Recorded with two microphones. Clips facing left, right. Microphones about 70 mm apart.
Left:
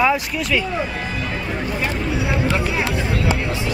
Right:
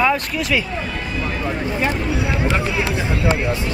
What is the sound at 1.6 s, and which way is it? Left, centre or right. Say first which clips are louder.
Speech: right 2 dB; right.